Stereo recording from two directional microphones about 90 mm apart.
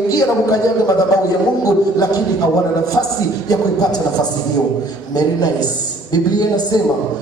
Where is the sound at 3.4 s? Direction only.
45° left (ahead or behind).